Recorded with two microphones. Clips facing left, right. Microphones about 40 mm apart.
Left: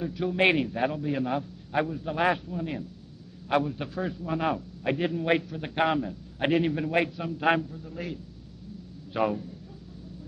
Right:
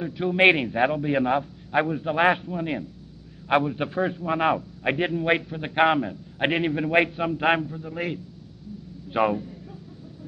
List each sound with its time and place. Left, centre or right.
0.0 s a man's voice: right
5.1 s a man's voice: right
9.1 s a sound: right